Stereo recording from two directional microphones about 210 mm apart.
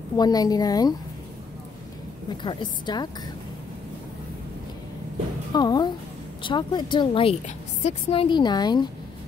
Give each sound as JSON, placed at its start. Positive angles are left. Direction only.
{"t": 0.2, "sound": "a woman's voice", "side_deg": 20}
{"t": 2.4, "sound": "a woman's voice", "side_deg": 20}
{"t": 5.5, "sound": "a woman's voice", "side_deg": 20}